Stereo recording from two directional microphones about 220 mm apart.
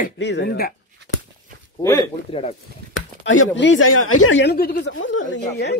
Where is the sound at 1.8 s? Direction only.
15° left (ahead or behind).